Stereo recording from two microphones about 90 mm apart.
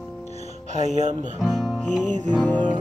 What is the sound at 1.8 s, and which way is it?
Music, 15° left (ahead or behind).